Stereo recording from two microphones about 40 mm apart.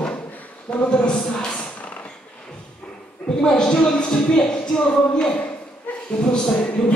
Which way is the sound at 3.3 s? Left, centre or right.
Centre.